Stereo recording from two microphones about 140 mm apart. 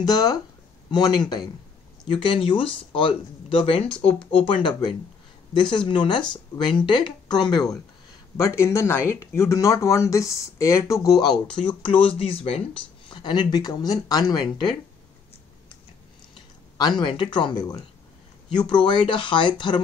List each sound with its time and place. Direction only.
0.0 s speech: 30° left (ahead or behind)
4.0 s speech: 10° left (ahead or behind)
4.4 s speech: 35° left (ahead or behind)
8.4 s speech: 20° left (ahead or behind)
11.2 s speech: 5° left (ahead or behind)
11.6 s speech: 40° left (ahead or behind)
16.7 s speech: 30° left (ahead or behind)